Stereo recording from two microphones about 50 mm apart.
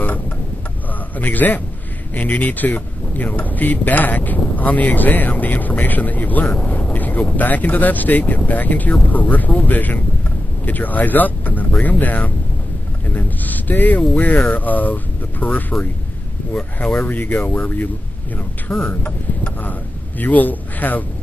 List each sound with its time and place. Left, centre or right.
1.1 s speech: left
17.0 s speech: left
18.7 s a sound: left